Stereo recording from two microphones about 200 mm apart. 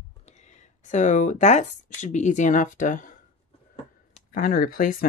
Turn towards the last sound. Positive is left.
turn(degrees=45)  # may be behind; listen again after turning